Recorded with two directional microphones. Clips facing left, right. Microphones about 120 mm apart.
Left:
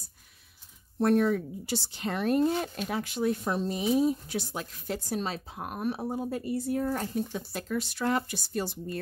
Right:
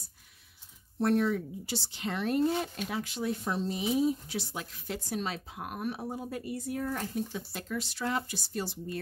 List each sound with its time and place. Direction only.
0.9 s speech: 50° left (ahead or behind)